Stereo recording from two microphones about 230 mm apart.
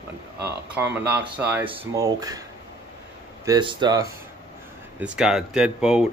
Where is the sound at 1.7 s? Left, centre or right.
Centre.